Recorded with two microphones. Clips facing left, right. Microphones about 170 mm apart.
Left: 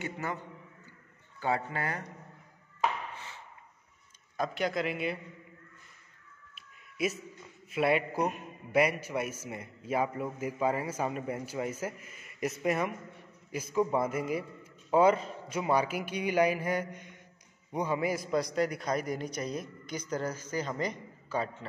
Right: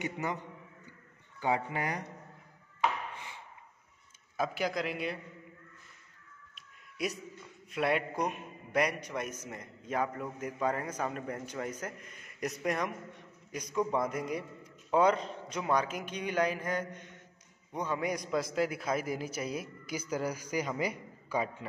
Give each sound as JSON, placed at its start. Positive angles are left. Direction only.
{"t": 0.0, "sound": "a man's voice", "side_deg": -15}
{"t": 4.4, "sound": "a man's voice", "side_deg": 0}
{"t": 6.5, "sound": "a sound", "side_deg": 5}
{"t": 7.7, "sound": "a man's voice", "side_deg": 5}